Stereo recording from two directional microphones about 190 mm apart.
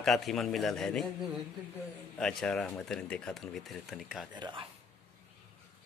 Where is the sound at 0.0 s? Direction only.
Centre (ahead or behind).